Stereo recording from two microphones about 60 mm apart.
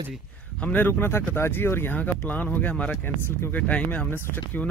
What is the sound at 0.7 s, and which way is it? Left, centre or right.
Speech, left.